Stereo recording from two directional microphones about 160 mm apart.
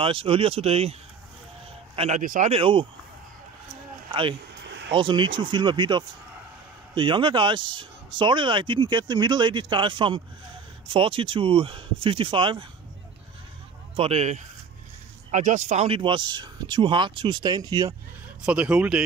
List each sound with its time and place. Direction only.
0.0 s speech: 35° right (ahead or behind)
2.0 s speech: 50° right (ahead or behind)
2.5 s speech: 35° right (ahead or behind)
4.1 s speech: 30° right (ahead or behind)
4.6 s a sound: 90° right
4.9 s speech: 30° right (ahead or behind)
13.9 s speech: 40° right (ahead or behind)
18.4 s speech: 5° right (ahead or behind)